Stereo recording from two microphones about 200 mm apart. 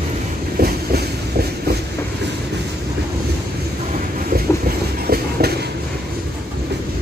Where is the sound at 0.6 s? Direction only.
50° right (ahead or behind).